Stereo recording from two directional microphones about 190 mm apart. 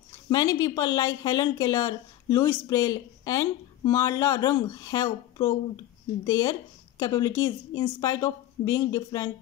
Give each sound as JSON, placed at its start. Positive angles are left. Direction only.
{"t": 0.3, "sound": "speech", "side_deg": 20}